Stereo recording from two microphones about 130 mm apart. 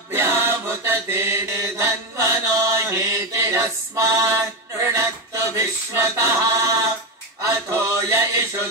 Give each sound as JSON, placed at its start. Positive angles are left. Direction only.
{"t": 0.1, "sound": "mantra", "side_deg": -20}
{"t": 4.7, "sound": "a capella", "side_deg": -25}
{"t": 7.4, "sound": "chant", "side_deg": -25}